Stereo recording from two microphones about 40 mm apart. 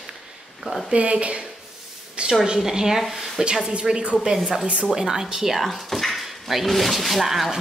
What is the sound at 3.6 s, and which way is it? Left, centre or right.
Speech, right.